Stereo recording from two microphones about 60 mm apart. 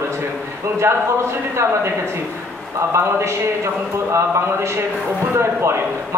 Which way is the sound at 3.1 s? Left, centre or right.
Right.